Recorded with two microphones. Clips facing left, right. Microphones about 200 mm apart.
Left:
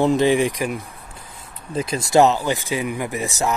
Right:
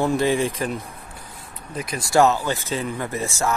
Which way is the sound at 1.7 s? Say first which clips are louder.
Left 3 dB; 25° left (ahead or behind).